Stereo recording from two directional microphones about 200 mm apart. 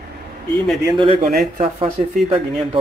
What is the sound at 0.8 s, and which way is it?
Speech, 25° right (ahead or behind).